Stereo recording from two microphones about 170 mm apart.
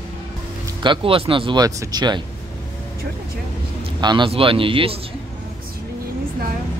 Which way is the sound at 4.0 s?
25° right (ahead or behind).